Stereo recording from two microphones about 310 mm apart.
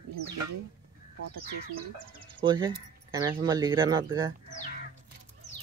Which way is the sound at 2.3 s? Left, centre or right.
Centre.